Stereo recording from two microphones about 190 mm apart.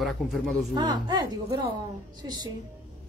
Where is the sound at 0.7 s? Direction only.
20° right (ahead or behind).